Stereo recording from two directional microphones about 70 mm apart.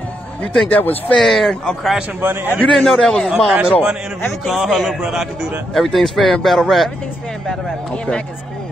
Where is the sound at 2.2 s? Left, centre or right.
Right.